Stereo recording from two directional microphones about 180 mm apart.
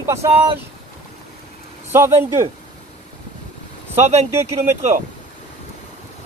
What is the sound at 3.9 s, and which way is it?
Speech, 35° right (ahead or behind).